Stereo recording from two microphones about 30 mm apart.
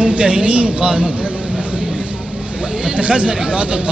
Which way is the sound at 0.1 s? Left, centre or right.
Right.